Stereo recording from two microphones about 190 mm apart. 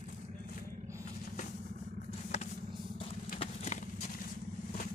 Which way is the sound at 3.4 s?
35° left (ahead or behind).